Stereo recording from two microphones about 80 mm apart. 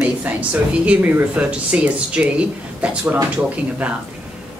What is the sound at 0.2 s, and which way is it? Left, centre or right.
Speech, centre.